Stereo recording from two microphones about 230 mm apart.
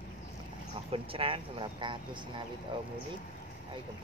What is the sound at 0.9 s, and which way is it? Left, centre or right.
Speech, right.